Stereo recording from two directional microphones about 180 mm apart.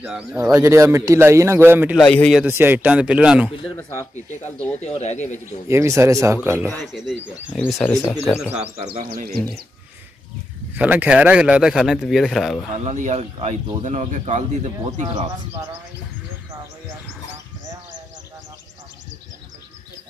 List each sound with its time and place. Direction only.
0.0 s a man's voice: 5° right (ahead or behind)
0.5 s a man's voice: 15° right (ahead or behind)
2.0 s a man's voice: 5° left (ahead or behind)
2.4 s a man's voice: 10° right (ahead or behind)
4.8 s speech: 40° left (ahead or behind)
5.7 s a man's voice: 15° right (ahead or behind)
6.7 s a man's voice: centre (ahead or behind)
7.9 s speech: 15° left (ahead or behind)
9.1 s speech: 55° right (ahead or behind)
10.7 s a man's voice: 10° right (ahead or behind)
12.7 s speech: 40° right (ahead or behind)
15.0 s speech: 30° right (ahead or behind)